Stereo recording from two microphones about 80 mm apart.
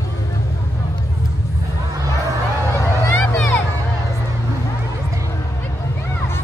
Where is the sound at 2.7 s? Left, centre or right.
Left.